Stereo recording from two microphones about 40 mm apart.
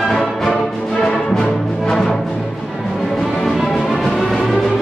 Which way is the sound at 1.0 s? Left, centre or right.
Centre.